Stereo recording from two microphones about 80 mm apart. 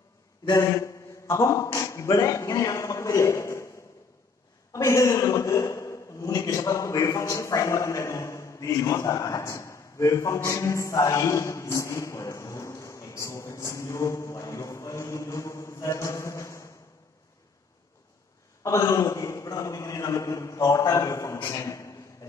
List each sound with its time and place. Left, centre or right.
0.5 s a man's voice: left
4.7 s a man's voice: left
18.6 s a man's voice: left